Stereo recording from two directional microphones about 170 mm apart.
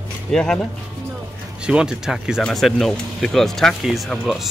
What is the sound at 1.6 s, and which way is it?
Speech, 5° right (ahead or behind).